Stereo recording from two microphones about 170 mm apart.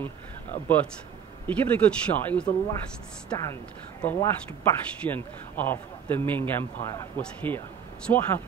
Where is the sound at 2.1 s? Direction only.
10° left (ahead or behind).